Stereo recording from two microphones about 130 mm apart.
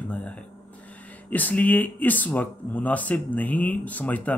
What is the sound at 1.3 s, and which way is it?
Speech, 15° left (ahead or behind).